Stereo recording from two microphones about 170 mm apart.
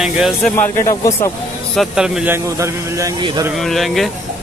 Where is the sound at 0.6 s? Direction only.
20° left (ahead or behind).